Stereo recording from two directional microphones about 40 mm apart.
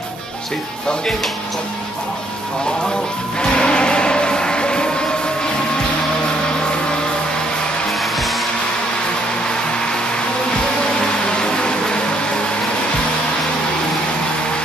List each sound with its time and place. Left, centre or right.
3.3 s music: left
8.0 s music: centre
10.9 s a sound: left